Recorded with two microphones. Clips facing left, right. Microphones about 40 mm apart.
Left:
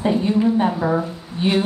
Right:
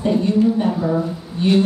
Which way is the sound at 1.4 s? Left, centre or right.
Left.